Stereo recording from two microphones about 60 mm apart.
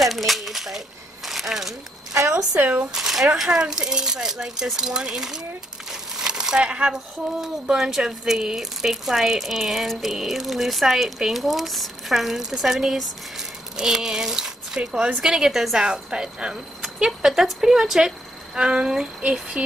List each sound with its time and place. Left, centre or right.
0.0 s a sound: centre
2.6 s speech: right
2.9 s speech: centre
3.4 s speech: centre
5.9 s crumpling: centre
7.4 s speech: centre